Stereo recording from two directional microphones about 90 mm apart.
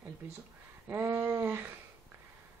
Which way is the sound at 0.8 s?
25° right (ahead or behind).